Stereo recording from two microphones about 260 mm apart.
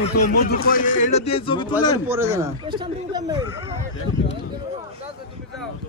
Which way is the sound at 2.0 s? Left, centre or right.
Centre.